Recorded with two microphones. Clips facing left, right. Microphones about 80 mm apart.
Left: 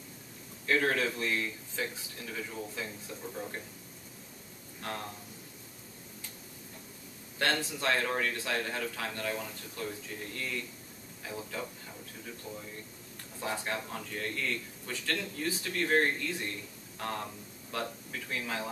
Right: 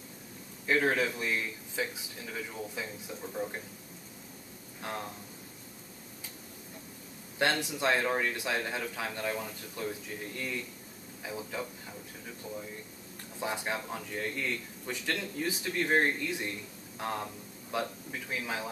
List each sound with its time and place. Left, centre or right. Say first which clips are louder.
0.7 s a man's voice: right 1 dB; centre
7.3 s a man's voice: right 2 dB; centre
13.4 s a man's voice: right 1 dB; centre